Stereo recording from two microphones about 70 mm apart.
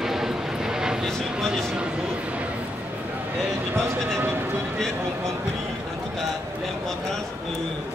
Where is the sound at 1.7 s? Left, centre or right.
Centre.